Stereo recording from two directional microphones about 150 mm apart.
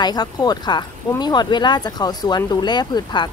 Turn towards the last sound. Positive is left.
turn(degrees=30)  # may be behind; listen again after turning